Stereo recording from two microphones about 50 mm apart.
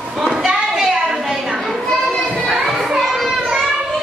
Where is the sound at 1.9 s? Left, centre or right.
Centre.